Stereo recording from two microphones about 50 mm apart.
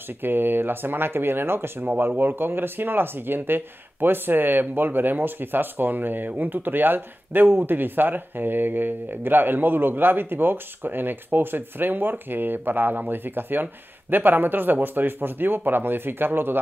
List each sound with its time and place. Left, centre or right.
0.2 s a man's voice: right